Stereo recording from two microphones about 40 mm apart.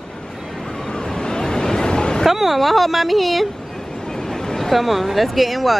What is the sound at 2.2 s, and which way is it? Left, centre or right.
Speech, centre.